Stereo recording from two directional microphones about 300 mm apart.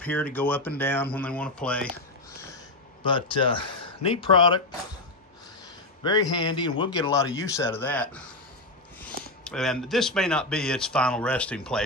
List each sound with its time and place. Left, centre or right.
0.0 s speech: centre
6.0 s speech: centre